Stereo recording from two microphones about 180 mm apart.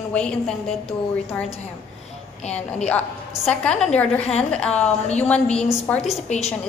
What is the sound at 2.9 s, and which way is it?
A woman's voice, 5° left (ahead or behind).